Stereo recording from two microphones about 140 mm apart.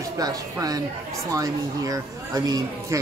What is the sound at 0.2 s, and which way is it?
Speech, 25° right (ahead or behind).